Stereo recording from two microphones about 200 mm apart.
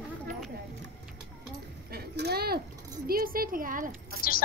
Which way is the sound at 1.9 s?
55° right (ahead or behind).